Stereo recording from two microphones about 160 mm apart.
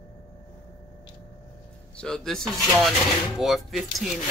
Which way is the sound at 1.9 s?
5° left (ahead or behind).